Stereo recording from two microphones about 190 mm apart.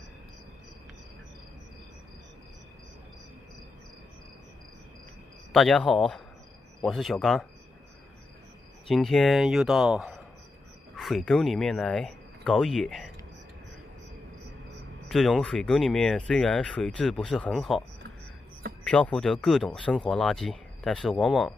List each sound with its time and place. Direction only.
5.5 s speech: 5° left (ahead or behind)
8.8 s speech: centre (ahead or behind)
15.0 s speech: centre (ahead or behind)
18.9 s speech: 5° left (ahead or behind)